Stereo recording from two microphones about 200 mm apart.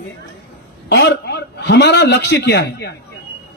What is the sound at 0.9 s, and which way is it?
A man's voice, 55° left (ahead or behind).